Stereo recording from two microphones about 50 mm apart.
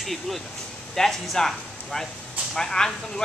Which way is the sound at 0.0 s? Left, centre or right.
Centre.